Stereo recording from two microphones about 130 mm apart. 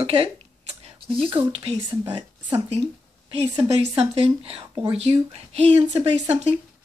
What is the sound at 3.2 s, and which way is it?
A woman's voice, 40° right (ahead or behind).